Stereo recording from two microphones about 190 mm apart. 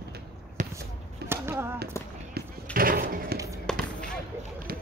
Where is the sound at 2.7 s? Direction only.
50° right (ahead or behind).